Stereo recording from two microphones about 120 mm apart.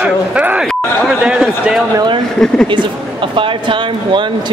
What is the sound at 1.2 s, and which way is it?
Speech, centre (ahead or behind).